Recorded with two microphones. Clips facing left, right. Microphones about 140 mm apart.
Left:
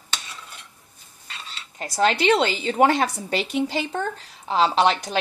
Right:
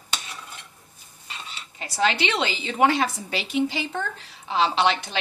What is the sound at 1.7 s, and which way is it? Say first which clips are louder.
A woman's voice: left 3 dB; 45° left (ahead or behind).